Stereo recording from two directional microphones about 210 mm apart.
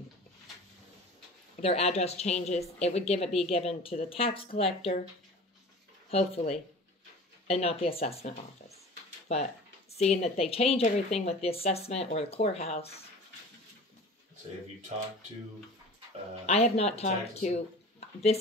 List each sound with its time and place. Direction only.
1.6 s a woman's voice: 30° left (ahead or behind)
6.0 s speech: 30° left (ahead or behind)
7.4 s speech: 30° left (ahead or behind)
16.4 s speech: 30° left (ahead or behind)